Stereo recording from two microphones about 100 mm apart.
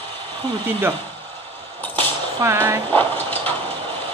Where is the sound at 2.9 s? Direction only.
20° left (ahead or behind).